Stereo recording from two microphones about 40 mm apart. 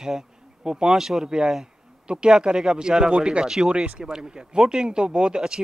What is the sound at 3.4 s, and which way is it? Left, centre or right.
Speech, centre.